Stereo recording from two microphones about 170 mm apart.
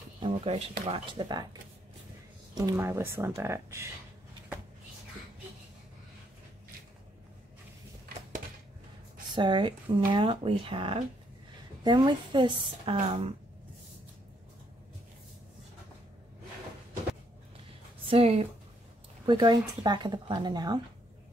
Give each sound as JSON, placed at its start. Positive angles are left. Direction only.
{"t": 0.2, "sound": "speech", "side_deg": -35}
{"t": 9.3, "sound": "speech", "side_deg": -25}
{"t": 18.0, "sound": "speech", "side_deg": -35}